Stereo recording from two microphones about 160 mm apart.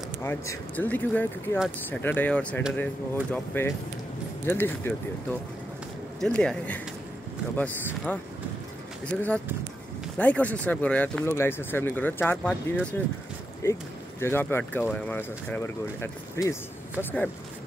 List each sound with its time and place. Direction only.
0.2 s speech: 15° left (ahead or behind)
6.2 s speech: 5° left (ahead or behind)
13.6 s speech: 15° left (ahead or behind)